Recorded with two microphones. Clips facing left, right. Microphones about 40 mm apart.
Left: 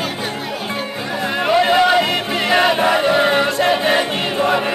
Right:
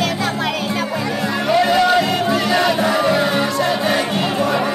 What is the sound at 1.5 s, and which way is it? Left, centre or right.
Music, left.